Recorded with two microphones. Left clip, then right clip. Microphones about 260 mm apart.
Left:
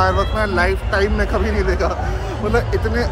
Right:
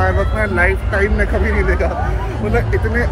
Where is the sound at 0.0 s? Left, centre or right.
Centre.